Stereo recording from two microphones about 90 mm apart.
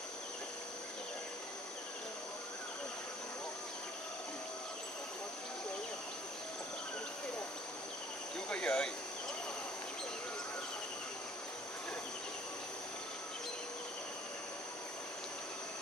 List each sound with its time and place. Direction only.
8.5 s speech: 10° left (ahead or behind)